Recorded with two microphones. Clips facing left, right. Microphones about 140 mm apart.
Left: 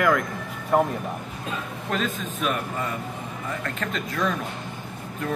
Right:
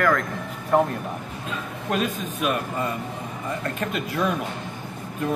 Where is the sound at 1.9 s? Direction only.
15° right (ahead or behind).